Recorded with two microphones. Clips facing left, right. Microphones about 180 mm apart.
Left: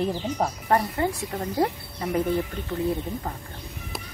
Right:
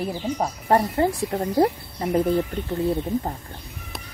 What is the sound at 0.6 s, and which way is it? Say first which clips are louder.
Speech: right 5 dB; 30° right (ahead or behind).